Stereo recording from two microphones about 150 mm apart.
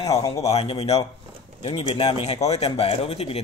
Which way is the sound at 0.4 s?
45° left (ahead or behind).